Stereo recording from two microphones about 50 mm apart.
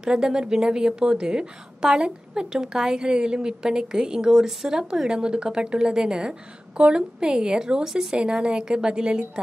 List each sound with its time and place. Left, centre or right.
0.0 s a woman's voice: centre